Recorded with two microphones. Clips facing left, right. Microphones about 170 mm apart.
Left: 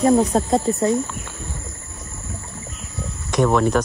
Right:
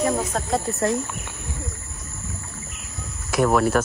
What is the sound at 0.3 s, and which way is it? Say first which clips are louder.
Speech: left 6 dB; 15° left (ahead or behind).